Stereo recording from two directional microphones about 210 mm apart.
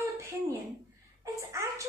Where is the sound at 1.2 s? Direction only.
15° right (ahead or behind).